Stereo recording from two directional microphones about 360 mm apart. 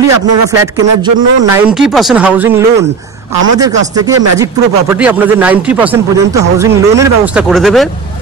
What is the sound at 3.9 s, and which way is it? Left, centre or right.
Speech, centre.